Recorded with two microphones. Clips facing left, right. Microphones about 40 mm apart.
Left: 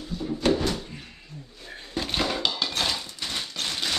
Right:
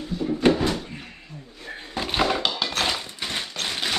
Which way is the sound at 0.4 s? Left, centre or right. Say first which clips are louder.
Right 3 dB; right.